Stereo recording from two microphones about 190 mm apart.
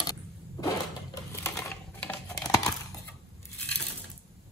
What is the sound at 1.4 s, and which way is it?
Typewriter, 15° left (ahead or behind).